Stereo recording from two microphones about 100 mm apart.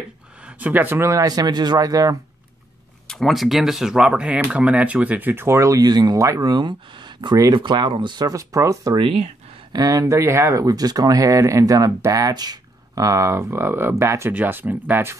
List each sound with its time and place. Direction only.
0.5 s speech: 15° right (ahead or behind); by 2.1 s 35° right (ahead or behind)
3.1 s speech: 5° left (ahead or behind); by 8.9 s 30° right (ahead or behind)
8.9 s speech: 70° right (ahead or behind)
9.7 s speech: 40° right (ahead or behind); by 15.1 s 20° right (ahead or behind)